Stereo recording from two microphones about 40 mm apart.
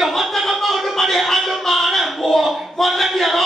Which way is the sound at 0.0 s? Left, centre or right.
Centre.